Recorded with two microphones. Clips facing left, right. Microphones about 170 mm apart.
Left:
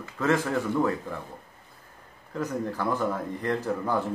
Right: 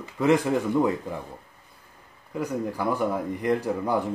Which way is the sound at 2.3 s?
10° right (ahead or behind).